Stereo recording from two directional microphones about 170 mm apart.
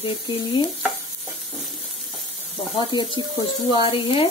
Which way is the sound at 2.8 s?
25° left (ahead or behind).